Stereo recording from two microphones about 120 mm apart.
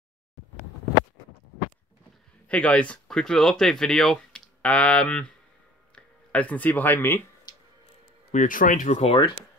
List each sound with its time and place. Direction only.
2.4 s speech: 10° left (ahead or behind)
7.5 s music: 35° left (ahead or behind)
8.3 s speech: 90° left
9.0 s speech: 45° left (ahead or behind)